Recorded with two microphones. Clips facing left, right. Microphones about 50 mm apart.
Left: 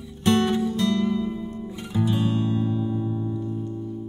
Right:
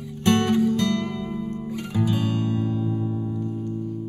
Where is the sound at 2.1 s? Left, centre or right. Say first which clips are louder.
Left 3 dB; left.